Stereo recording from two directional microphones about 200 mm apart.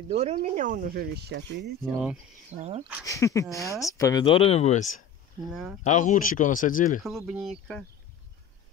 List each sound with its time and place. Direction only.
0.1 s speech: 30° right (ahead or behind); by 1.7 s 60° right (ahead or behind)
2.6 s speech: 30° right (ahead or behind)
3.1 s speech: 15° left (ahead or behind); by 4.8 s 35° left (ahead or behind)
5.9 s speech: 40° left (ahead or behind)
7.1 s speech: centre (ahead or behind)